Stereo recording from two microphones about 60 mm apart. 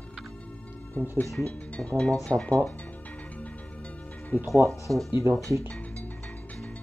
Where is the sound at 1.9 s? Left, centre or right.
Centre.